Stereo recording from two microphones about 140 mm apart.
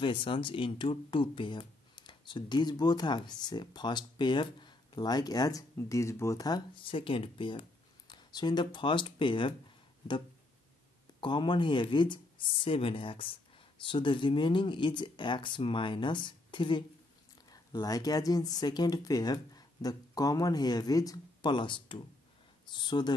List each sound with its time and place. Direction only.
0.0 s speech: 35° left (ahead or behind)
11.1 s speech: 35° left (ahead or behind)